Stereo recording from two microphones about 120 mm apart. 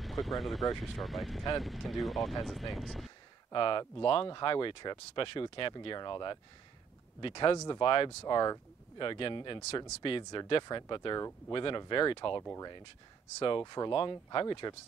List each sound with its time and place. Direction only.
0.0 s speech: centre (ahead or behind)
3.5 s speech: 45° left (ahead or behind)
7.5 s speech: 25° left (ahead or behind)
7.8 s speech: 45° left (ahead or behind)
11.1 s speech: 25° left (ahead or behind)
11.5 s speech: 45° left (ahead or behind)
12.4 s speech: 25° left (ahead or behind)
13.4 s speech: 40° left (ahead or behind)